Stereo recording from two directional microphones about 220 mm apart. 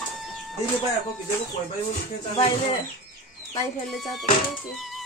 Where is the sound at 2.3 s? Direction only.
25° left (ahead or behind).